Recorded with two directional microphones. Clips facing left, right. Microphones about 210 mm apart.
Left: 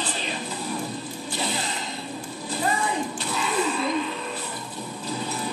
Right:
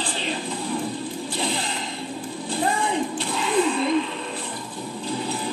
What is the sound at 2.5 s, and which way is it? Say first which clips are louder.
Music: right 2 dB; 30° right (ahead or behind).